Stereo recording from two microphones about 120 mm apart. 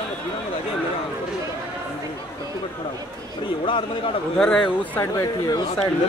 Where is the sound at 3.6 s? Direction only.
45° left (ahead or behind).